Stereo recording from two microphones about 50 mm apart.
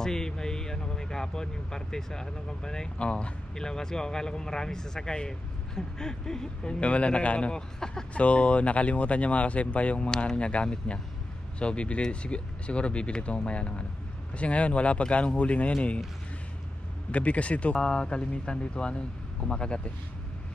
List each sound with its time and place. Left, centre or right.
0.0 s speech: centre
8.1 s speech: left
17.1 s speech: left